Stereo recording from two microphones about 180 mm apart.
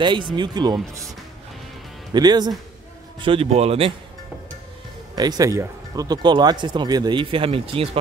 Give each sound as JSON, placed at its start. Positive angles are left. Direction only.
{"t": 0.0, "sound": "speech", "side_deg": -25}
{"t": 2.1, "sound": "a man's voice", "side_deg": -20}
{"t": 5.1, "sound": "speech", "side_deg": -20}